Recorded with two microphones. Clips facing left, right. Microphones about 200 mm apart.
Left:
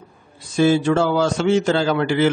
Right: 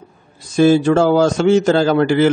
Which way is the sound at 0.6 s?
45° right (ahead or behind).